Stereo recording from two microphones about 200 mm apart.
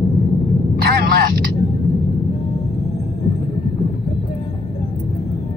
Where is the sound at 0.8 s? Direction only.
50° right (ahead or behind).